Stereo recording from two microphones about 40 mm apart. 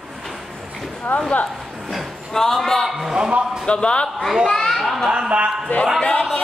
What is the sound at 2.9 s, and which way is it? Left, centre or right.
Speech, centre.